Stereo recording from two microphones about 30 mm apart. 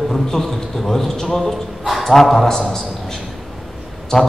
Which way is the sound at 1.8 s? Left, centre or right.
Centre.